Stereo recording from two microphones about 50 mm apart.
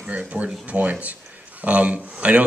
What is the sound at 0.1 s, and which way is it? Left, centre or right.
A man's voice, right.